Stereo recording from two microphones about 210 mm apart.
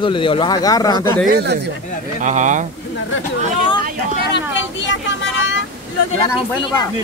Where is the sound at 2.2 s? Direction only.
35° right (ahead or behind).